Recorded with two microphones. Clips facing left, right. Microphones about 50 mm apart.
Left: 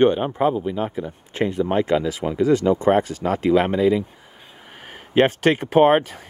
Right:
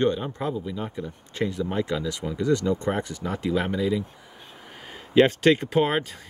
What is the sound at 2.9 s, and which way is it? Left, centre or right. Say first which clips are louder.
Speech: left 9 dB; left.